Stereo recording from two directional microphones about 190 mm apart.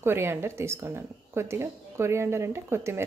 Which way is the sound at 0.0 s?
10° right (ahead or behind).